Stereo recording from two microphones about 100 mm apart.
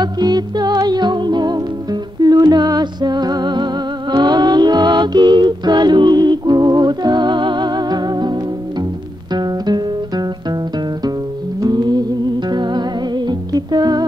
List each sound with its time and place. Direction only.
0.0 s music: 45° right (ahead or behind)
9.3 s music: 45° right (ahead or behind)
11.6 s music: 45° right (ahead or behind)
13.3 s humming: 45° right (ahead or behind)